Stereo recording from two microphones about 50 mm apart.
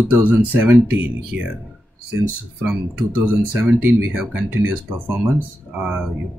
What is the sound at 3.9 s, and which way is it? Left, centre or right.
Speech, right.